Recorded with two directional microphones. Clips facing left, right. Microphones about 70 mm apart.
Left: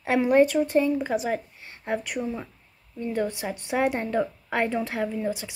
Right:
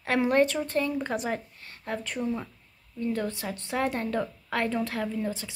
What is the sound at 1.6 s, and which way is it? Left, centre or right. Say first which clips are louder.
A woman's voice: left 5 dB; centre.